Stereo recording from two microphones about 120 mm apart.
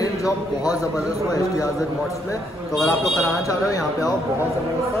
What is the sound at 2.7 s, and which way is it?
Speech, centre (ahead or behind).